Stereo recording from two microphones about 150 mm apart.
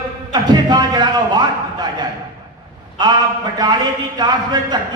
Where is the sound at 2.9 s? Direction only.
30° right (ahead or behind).